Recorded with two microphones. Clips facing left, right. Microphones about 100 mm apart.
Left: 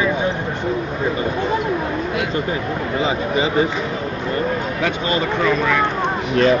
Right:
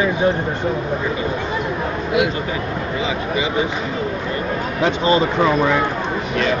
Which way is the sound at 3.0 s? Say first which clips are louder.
Left 3 dB; 35° left (ahead or behind).